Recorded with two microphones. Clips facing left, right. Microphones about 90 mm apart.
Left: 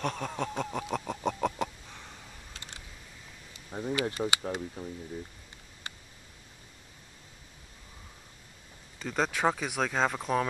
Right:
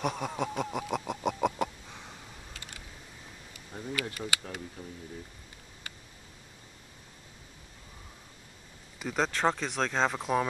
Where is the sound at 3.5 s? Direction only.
25° left (ahead or behind).